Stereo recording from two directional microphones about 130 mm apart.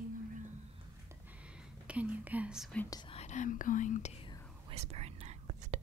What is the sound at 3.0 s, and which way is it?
Whispering, 55° left (ahead or behind).